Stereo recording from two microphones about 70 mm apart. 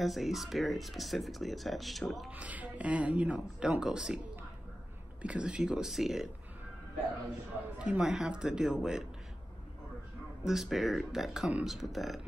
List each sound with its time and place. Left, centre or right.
0.0 s speech: centre
2.3 s speech: right
5.2 s speech: centre
7.8 s speech: centre
10.4 s speech: centre